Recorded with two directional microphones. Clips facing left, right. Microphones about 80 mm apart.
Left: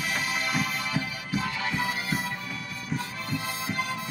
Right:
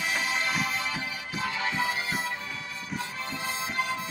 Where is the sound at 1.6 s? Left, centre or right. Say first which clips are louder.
Even; right.